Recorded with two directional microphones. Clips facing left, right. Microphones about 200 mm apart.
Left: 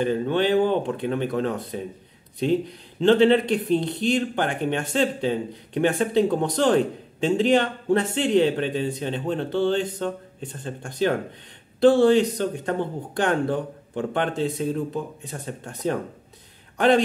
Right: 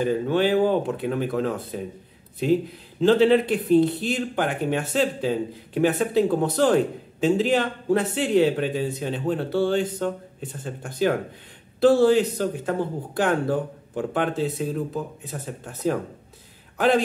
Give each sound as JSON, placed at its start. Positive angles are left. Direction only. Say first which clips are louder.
{"t": 0.0, "sound": "speech", "louder": "right 1 dB", "side_deg": -5}
{"t": 3.0, "sound": "a man's voice", "louder": "even", "side_deg": -5}